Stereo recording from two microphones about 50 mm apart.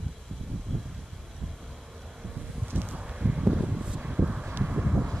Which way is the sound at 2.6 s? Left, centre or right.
Right.